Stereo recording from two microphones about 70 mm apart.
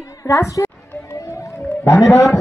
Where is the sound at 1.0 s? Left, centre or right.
Left.